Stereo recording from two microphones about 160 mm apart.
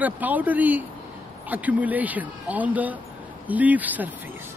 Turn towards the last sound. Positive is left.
turn(degrees=-10)  # may be behind; listen again after turning